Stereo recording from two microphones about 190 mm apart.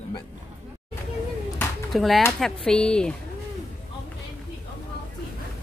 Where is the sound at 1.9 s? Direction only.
Centre (ahead or behind).